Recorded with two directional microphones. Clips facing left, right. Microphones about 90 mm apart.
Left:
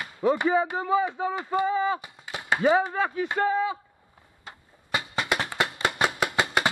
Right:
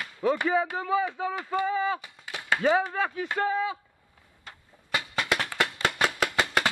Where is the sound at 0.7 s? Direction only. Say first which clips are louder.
Left 2 dB; 15° left (ahead or behind).